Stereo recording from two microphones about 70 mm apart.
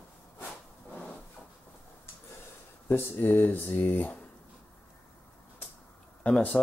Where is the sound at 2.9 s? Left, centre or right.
Left.